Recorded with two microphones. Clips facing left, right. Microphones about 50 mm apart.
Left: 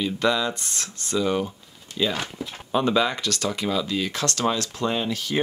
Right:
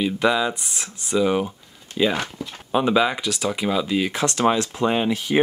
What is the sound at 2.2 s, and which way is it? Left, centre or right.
Speech, centre.